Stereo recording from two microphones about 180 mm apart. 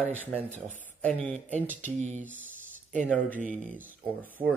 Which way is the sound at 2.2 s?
10° right (ahead or behind).